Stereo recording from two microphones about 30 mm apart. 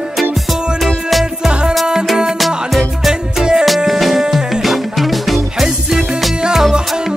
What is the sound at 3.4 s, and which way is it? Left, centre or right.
Music, right.